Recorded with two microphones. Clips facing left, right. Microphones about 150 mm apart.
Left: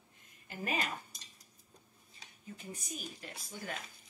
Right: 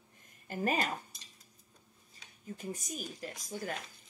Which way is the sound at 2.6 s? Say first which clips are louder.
Right 5 dB; 40° right (ahead or behind).